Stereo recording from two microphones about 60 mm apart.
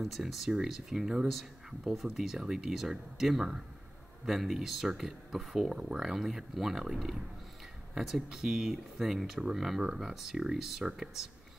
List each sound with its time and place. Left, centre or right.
0.0 s speech: centre